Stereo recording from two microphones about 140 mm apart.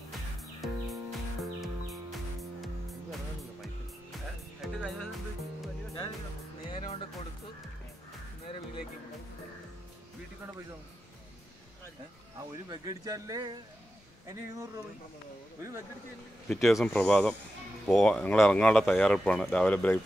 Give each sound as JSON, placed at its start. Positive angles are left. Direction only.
{"t": 0.6, "sound": "music", "side_deg": 0}
{"t": 6.7, "sound": "speech", "side_deg": 40}
{"t": 12.6, "sound": "speech", "side_deg": -25}
{"t": 16.4, "sound": "speech", "side_deg": 0}